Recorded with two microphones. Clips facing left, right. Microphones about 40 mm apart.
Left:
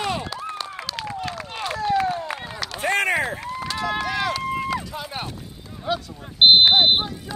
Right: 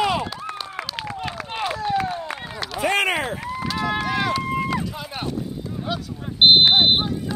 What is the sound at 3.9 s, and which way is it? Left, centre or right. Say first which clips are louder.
Run: right 1 dB; centre.